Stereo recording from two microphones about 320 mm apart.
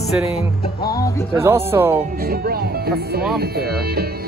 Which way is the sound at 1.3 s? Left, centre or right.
Centre.